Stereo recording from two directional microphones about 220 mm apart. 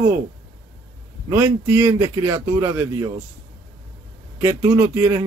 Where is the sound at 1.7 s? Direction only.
10° right (ahead or behind).